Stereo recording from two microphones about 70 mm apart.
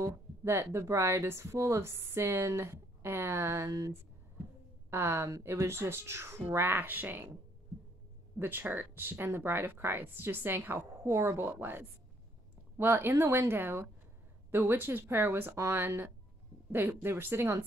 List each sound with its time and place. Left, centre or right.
0.0 s speech: right
4.9 s speech: right
8.4 s speech: right
11.0 s speech: right